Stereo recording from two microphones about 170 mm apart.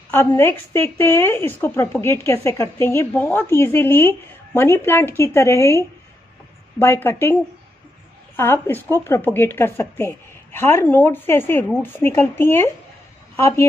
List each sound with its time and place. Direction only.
0.1 s a woman's voice: 15° left (ahead or behind)
8.4 s a woman's voice: 15° left (ahead or behind)